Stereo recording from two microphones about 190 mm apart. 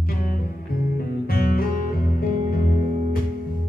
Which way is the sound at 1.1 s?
50° left (ahead or behind).